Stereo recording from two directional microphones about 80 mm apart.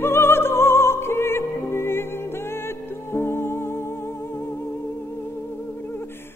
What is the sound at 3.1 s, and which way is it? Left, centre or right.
Music, left.